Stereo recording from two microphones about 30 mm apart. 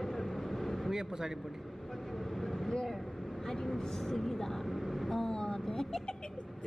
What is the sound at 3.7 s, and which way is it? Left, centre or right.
Speech, centre.